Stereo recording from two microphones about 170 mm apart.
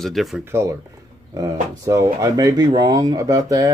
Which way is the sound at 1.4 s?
20° right (ahead or behind).